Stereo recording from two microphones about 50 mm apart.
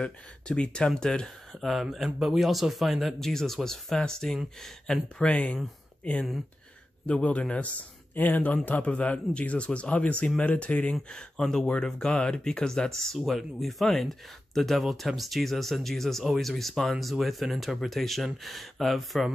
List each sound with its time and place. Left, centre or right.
0.0 s speech: centre
1.5 s speech: centre
2.0 s speech: centre
5.2 s speech: left
8.1 s speech: left
11.1 s speech: centre